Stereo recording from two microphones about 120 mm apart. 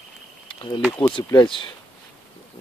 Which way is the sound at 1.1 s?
40° left (ahead or behind).